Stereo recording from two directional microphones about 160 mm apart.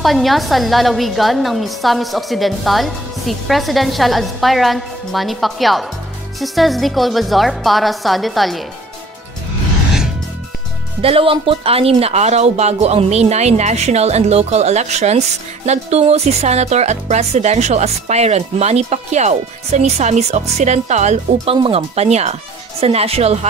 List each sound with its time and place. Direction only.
0.0 s a woman's voice: centre (ahead or behind)
11.0 s speech: 35° right (ahead or behind)